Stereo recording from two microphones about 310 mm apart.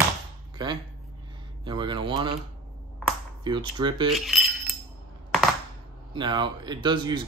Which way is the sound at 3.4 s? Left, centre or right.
Centre.